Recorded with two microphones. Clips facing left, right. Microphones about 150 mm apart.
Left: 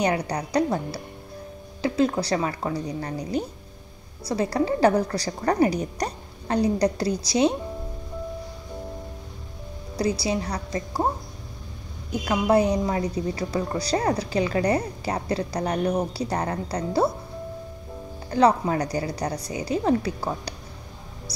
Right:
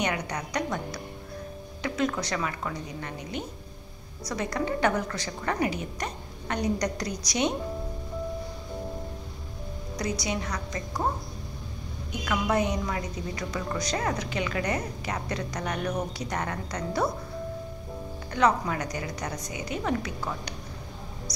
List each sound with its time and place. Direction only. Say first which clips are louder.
0.0 s a woman's voice: left 6 dB; 35° left (ahead or behind)
9.9 s a woman's voice: left 6 dB; 30° left (ahead or behind)
12.1 s a woman's voice: left 6 dB; 30° left (ahead or behind)
18.3 s a woman's voice: left 5 dB; 30° left (ahead or behind)